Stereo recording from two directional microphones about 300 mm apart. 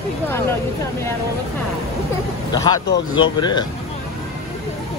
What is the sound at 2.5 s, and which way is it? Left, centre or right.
Speech, centre.